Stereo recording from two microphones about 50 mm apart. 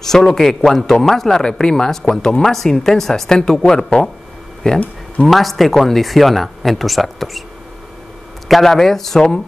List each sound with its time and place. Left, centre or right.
0.0 s a man's voice: centre
4.6 s speech: left
5.2 s speech: centre
8.5 s a man's voice: centre